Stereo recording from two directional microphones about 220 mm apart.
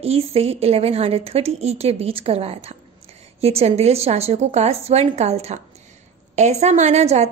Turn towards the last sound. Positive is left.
turn(degrees=-30)  # may be behind; listen again after turning